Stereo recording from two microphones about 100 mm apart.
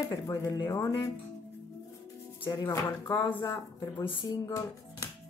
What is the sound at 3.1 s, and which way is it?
Speech, 45° left (ahead or behind).